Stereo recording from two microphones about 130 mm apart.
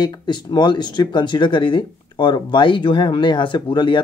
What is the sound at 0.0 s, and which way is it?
Speech, 35° left (ahead or behind).